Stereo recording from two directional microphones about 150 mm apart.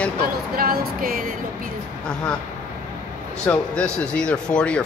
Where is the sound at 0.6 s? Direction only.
75° right (ahead or behind).